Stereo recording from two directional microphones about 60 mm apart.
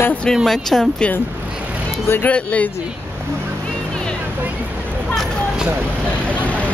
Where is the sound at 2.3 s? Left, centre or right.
Left.